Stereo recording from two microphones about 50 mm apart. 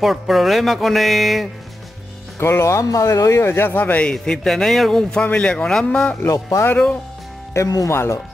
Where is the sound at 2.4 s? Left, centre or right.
Left.